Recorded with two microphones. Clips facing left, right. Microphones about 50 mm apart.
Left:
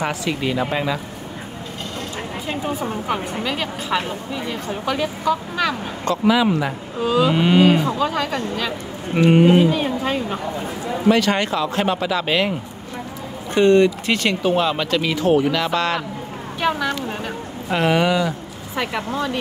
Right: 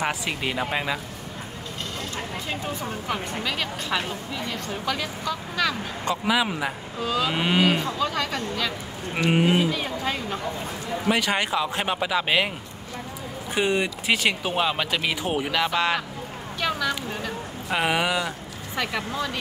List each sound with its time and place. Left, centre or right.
0.0 s speech: centre
2.6 s speech: centre
6.0 s speech: centre
7.0 s speech: centre
7.3 s speech: centre
7.8 s speech: centre
9.3 s speech: centre
9.7 s speech: centre
11.1 s speech: centre
13.6 s speech: centre
17.6 s speech: centre